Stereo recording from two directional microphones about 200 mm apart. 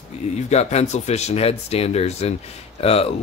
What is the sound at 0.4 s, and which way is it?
Speech, 35° left (ahead or behind).